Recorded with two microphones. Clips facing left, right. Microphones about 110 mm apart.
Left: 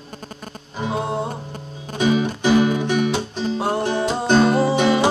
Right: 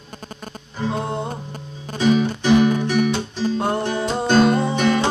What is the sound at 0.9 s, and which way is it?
Music, 5° left (ahead or behind).